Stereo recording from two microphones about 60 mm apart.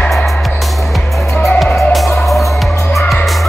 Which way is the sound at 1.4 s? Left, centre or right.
Centre.